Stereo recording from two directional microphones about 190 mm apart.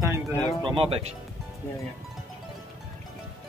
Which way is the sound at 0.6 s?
25° right (ahead or behind).